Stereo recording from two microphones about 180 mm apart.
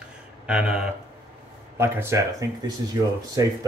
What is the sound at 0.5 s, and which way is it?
Speech, 5° right (ahead or behind).